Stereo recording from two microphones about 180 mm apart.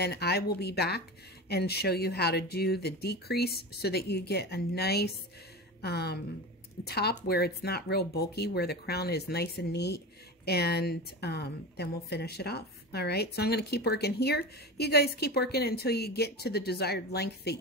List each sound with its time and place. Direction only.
0.0 s speech: 65° left (ahead or behind)